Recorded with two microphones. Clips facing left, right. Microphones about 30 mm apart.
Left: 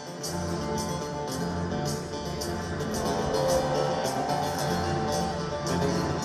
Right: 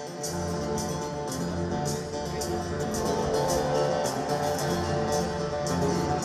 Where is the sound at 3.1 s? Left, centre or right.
Centre.